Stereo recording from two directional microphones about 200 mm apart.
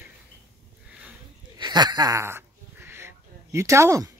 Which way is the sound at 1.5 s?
20° right (ahead or behind).